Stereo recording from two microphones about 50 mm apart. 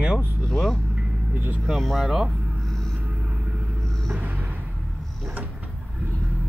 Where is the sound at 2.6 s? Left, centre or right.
Centre.